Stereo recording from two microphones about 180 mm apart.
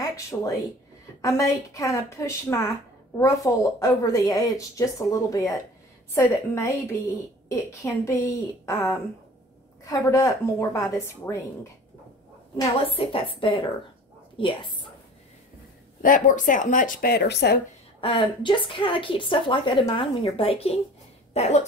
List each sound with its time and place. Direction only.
0.0 s a woman's voice: 20° left (ahead or behind)
12.5 s a woman's voice: 30° left (ahead or behind)
16.0 s speech: 50° left (ahead or behind); by 17.6 s 65° left (ahead or behind)
18.0 s a woman's voice: 30° left (ahead or behind)